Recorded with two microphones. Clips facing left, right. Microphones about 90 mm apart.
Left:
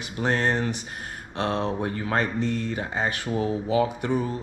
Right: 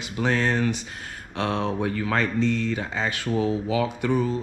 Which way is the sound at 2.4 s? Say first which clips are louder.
Right 3 dB; 75° right (ahead or behind).